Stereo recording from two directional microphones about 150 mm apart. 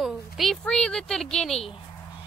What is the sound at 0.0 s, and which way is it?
A woman's voice, centre (ahead or behind).